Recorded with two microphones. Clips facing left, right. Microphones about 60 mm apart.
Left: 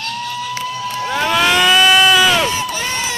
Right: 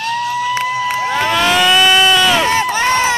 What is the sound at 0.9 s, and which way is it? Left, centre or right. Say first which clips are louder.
Crowd: right 3 dB; right.